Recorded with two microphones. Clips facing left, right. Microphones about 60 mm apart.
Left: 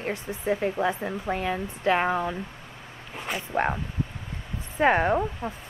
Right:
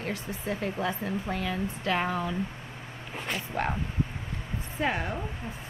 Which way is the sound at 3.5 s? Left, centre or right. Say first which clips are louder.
Left 6 dB; left.